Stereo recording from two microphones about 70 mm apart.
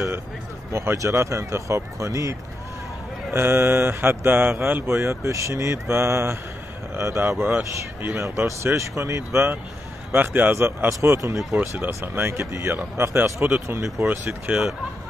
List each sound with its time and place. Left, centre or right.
0.7 s speech: right
3.3 s speech: right
4.8 s speech: right
8.2 s speech: right
10.1 s speech: right
10.5 s speech: right
14.5 s speech: centre